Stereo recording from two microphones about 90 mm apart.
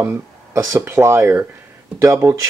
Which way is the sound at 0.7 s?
25° right (ahead or behind).